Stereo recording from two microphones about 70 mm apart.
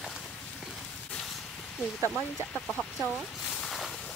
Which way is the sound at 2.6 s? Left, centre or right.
Centre.